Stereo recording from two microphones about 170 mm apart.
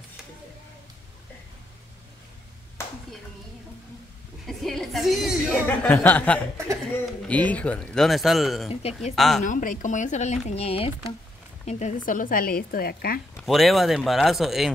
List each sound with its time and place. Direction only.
4.5 s a woman's voice: centre (ahead or behind)
8.6 s speech: 35° left (ahead or behind)
9.1 s a woman's voice: centre (ahead or behind)
9.4 s a woman's voice: 50° left (ahead or behind)
13.4 s a woman's voice: centre (ahead or behind)